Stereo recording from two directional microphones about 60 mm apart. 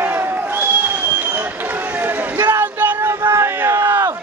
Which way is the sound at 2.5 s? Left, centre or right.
Right.